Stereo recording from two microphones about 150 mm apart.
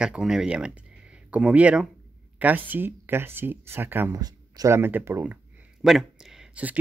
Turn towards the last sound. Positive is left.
turn(degrees=-10)  # may be behind; listen again after turning